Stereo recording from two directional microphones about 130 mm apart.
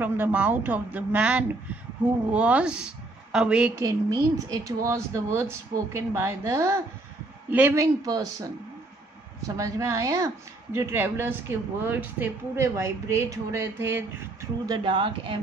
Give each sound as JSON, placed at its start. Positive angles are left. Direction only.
{"t": 0.0, "sound": "a woman's voice", "side_deg": -15}
{"t": 3.8, "sound": "a woman's voice", "side_deg": -25}
{"t": 7.8, "sound": "a woman's voice", "side_deg": -25}
{"t": 9.6, "sound": "a woman's voice", "side_deg": -25}
{"t": 14.8, "sound": "speech", "side_deg": -40}